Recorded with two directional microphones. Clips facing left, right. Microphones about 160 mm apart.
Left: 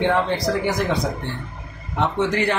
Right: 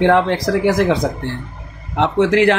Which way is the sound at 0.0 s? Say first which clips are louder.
Right 6 dB; 90° right.